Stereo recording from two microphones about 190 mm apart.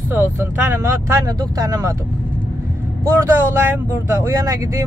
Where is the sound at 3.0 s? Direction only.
10° right (ahead or behind).